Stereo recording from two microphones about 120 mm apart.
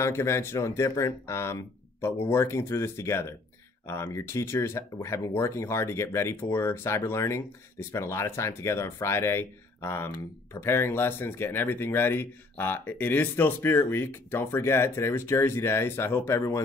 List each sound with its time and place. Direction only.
0.0 s speech: 20° left (ahead or behind)